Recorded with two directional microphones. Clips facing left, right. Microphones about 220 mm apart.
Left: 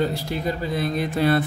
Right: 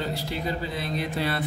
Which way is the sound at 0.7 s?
45° left (ahead or behind).